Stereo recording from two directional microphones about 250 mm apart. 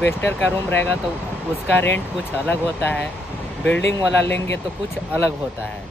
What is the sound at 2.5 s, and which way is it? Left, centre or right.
Speech, centre.